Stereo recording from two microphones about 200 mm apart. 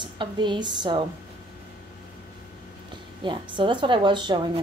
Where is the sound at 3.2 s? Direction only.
25° right (ahead or behind).